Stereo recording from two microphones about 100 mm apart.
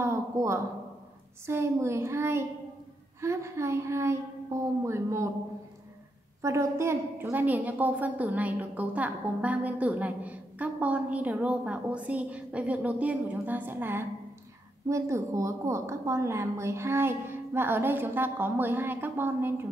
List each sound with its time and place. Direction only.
0.0 s a sound: 25° right (ahead or behind)
1.4 s a woman's voice: 25° right (ahead or behind)
6.4 s a woman's voice: 30° right (ahead or behind)